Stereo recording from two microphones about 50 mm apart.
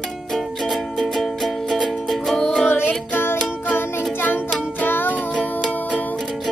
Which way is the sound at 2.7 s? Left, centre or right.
Left.